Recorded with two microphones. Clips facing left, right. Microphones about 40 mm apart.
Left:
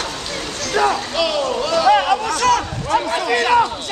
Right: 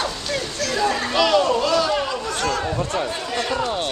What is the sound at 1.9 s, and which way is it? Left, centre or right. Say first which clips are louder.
Chatter: left 7 dB; left.